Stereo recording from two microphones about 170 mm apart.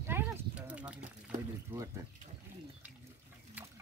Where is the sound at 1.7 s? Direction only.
10° right (ahead or behind).